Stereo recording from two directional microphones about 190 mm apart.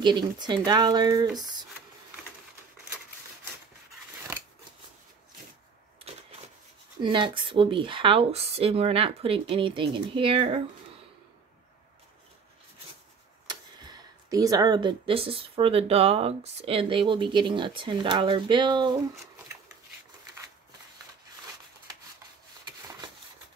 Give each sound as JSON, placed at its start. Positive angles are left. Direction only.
{"t": 0.0, "sound": "speech", "side_deg": -25}
{"t": 7.0, "sound": "speech", "side_deg": -25}
{"t": 13.5, "sound": "speech", "side_deg": -20}
{"t": 22.8, "sound": "a sound", "side_deg": -20}